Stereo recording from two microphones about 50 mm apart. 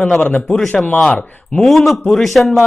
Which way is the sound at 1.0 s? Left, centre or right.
Centre.